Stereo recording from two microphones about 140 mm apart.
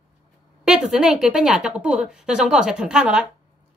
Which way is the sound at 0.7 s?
5° right (ahead or behind).